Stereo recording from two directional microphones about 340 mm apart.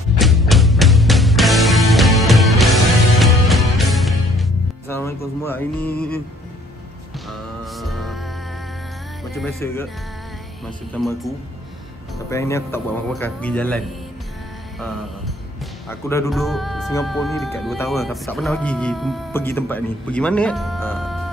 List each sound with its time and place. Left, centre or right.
0.2 s music: centre
7.2 s music: centre
9.3 s speech: centre
10.9 s speech: centre
14.8 s mantra: centre
16.1 s speech: centre